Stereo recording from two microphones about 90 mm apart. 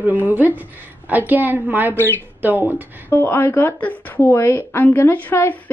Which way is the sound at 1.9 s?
20° left (ahead or behind).